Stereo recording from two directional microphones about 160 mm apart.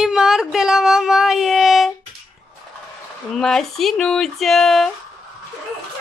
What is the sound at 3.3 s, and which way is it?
Speech, centre (ahead or behind).